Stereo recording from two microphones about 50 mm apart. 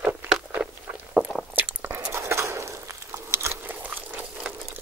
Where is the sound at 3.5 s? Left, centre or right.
Right.